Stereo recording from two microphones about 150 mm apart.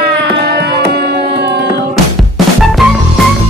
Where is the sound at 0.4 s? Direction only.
90° right.